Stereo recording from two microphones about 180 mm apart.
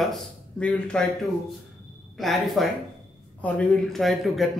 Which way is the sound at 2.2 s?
Centre (ahead or behind).